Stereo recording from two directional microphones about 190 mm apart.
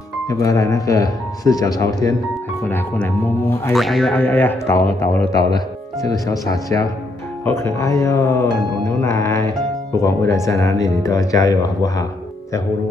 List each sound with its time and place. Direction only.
0.3 s speech: 15° left (ahead or behind)
3.7 s music: centre (ahead or behind)
4.1 s speech: 10° left (ahead or behind)